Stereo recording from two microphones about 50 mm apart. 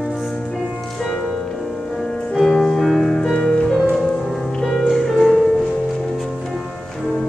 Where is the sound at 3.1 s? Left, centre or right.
Centre.